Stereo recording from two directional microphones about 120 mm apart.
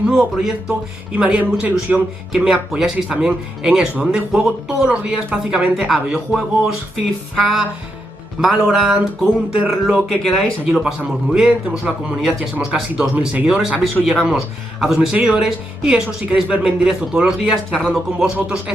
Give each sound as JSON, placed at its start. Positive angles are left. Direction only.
{"t": 0.0, "sound": "speech", "side_deg": -5}
{"t": 8.4, "sound": "speech", "side_deg": 0}